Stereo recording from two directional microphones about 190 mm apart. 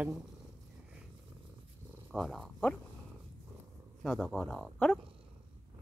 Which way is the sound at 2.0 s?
Centre (ahead or behind).